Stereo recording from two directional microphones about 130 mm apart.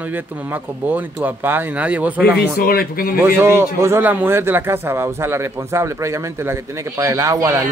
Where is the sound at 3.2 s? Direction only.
20° right (ahead or behind).